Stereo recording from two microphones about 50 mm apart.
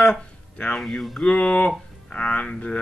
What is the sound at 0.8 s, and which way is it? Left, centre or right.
Speech, centre.